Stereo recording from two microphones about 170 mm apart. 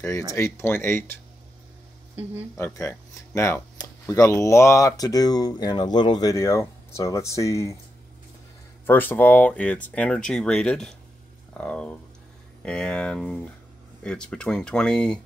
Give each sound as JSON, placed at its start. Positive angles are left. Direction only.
{"t": 0.0, "sound": "speech", "side_deg": 20}
{"t": 2.5, "sound": "speech", "side_deg": 15}
{"t": 8.8, "sound": "speech", "side_deg": 10}